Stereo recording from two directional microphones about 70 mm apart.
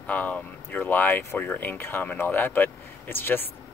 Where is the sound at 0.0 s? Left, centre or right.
Left.